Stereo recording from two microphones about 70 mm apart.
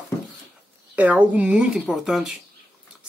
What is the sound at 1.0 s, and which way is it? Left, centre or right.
Speech, right.